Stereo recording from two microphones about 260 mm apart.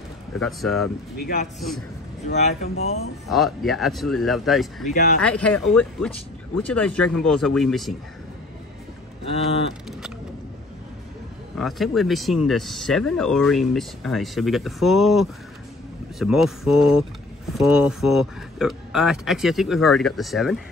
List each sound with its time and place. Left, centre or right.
0.4 s speech: centre
1.1 s a man's voice: left
2.2 s vehicle: left
3.3 s speech: centre
9.2 s vehicle: left
11.5 s speech: centre